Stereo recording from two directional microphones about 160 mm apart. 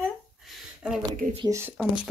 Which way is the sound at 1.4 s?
15° right (ahead or behind).